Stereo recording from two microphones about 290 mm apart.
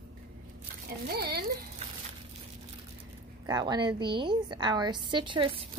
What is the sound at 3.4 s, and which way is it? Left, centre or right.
A woman's voice, centre.